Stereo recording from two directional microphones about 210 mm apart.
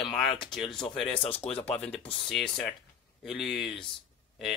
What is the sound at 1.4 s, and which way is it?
Speech, 30° left (ahead or behind).